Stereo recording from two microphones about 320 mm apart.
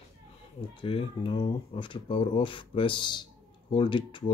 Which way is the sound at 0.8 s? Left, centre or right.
Centre.